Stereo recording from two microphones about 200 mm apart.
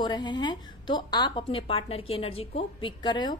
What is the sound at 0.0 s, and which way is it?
A woman's voice, 20° left (ahead or behind).